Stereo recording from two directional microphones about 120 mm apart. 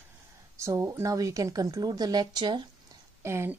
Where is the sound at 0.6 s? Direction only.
25° right (ahead or behind).